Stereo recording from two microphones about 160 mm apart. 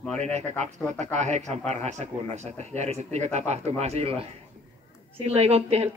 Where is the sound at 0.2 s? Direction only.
45° right (ahead or behind).